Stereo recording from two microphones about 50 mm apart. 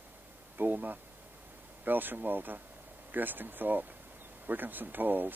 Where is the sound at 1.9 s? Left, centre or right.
Right.